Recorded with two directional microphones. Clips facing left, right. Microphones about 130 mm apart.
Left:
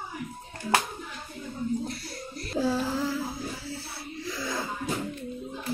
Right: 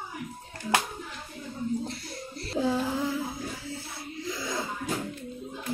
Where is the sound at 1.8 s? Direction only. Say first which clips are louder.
Left 1 dB; 25° right (ahead or behind).